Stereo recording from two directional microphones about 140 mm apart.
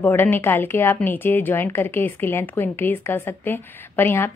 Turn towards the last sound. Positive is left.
turn(degrees=15)  # may be behind; listen again after turning